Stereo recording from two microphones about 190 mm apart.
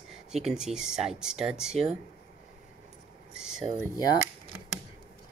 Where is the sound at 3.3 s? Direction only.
5° right (ahead or behind).